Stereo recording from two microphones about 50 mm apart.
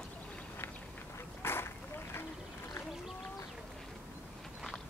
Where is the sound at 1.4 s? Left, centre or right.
Left.